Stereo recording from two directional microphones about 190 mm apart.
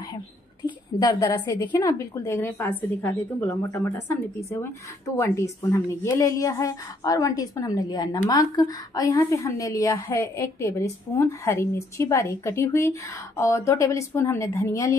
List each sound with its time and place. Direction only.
0.7 s a woman's voice: 20° left (ahead or behind)